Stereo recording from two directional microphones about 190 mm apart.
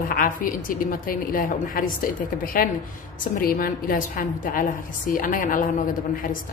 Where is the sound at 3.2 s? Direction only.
50° left (ahead or behind).